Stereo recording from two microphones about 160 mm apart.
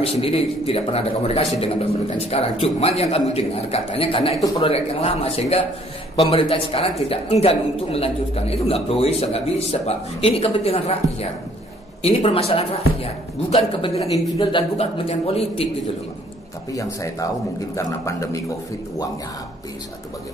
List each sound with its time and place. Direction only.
0.0 s speech: 35° left (ahead or behind)
16.7 s speech: 20° left (ahead or behind)